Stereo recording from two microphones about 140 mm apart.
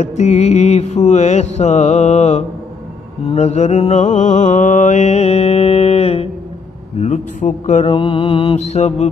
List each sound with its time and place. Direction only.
0.0 s mantra: 55° left (ahead or behind)
4.4 s mantra: 60° left (ahead or behind)
7.0 s a man's voice: 65° left (ahead or behind)
7.8 s mantra: 40° left (ahead or behind)
8.5 s mantra: 50° left (ahead or behind)